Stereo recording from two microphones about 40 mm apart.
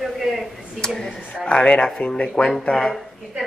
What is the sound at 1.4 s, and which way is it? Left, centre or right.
Speech, left.